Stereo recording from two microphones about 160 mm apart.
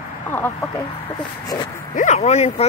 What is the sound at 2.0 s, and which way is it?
Speech, 45° left (ahead or behind).